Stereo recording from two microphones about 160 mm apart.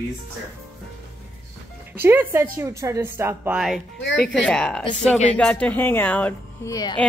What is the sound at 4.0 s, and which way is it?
Speech, 90° left.